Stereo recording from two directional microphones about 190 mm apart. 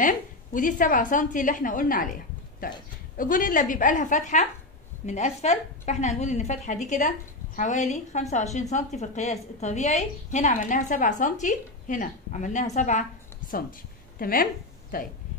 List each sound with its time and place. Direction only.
0.0 s a woman's voice: 45° left (ahead or behind)
3.2 s a woman's voice: 45° left (ahead or behind)